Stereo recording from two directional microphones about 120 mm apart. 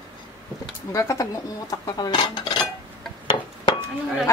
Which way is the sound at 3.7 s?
45° left (ahead or behind).